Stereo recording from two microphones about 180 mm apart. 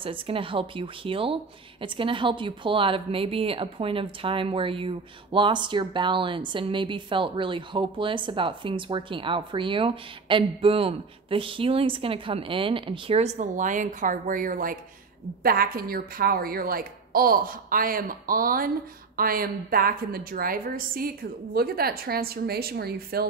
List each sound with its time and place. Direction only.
0.0 s a woman's voice: 30° right (ahead or behind); by 23.2 s 60° right (ahead or behind)